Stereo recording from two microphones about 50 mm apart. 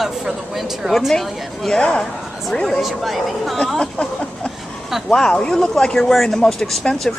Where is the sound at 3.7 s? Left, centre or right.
Centre.